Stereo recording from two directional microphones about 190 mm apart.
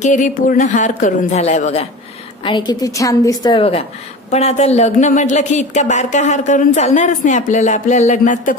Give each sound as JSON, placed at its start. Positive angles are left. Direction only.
{"t": 0.0, "sound": "a woman's voice", "side_deg": 40}
{"t": 2.4, "sound": "a woman's voice", "side_deg": 25}